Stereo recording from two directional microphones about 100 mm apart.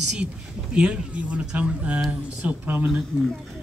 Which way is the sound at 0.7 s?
10° right (ahead or behind).